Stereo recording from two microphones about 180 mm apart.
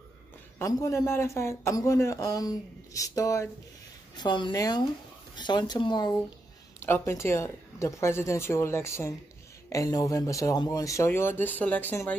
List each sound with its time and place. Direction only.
0.6 s speech: 20° left (ahead or behind)